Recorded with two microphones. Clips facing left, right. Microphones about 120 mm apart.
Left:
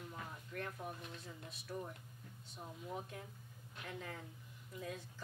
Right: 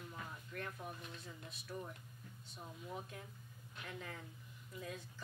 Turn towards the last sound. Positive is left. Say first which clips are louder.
# left 1 dB
turn(degrees=40)  # may be behind; listen again after turning